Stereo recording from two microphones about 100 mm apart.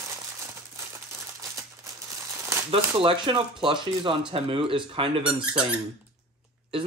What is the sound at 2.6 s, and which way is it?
Speech, 65° right (ahead or behind).